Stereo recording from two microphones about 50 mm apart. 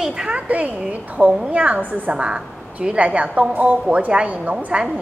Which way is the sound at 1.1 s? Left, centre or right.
Right.